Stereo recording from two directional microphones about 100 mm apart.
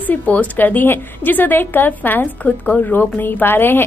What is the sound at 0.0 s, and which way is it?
A woman's voice, 15° left (ahead or behind).